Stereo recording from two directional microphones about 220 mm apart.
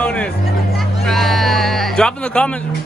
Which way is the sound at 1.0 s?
Centre (ahead or behind).